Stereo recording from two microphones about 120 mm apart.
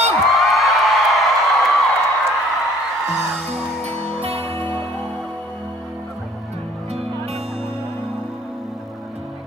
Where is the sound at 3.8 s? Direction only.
60° right (ahead or behind).